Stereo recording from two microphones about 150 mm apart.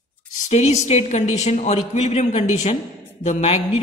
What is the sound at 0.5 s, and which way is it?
A man's voice, 45° left (ahead or behind).